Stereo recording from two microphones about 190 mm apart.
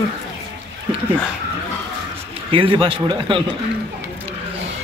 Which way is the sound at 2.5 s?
25° right (ahead or behind).